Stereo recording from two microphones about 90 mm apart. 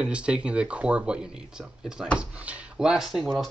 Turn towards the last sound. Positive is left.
turn(degrees=-5)  # may be behind; listen again after turning